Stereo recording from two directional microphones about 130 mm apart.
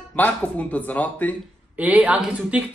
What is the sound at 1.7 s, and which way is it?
Speech, 10° right (ahead or behind).